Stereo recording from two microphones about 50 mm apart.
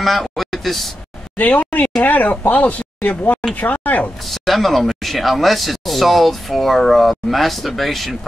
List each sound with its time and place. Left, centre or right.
0.0 s a sound: centre
1.4 s speech: left
4.3 s speech: centre